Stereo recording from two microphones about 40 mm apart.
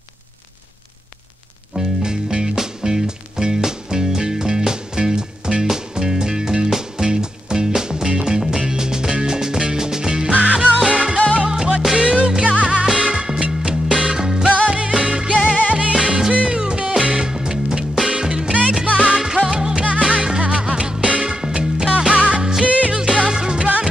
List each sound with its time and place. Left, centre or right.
1.8 s music: centre
10.3 s music: right
19.1 s music: centre
22.4 s music: centre
22.7 s music: right
23.1 s music: centre